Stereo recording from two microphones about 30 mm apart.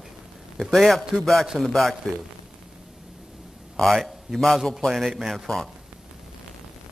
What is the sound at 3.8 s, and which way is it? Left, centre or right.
Speech, centre.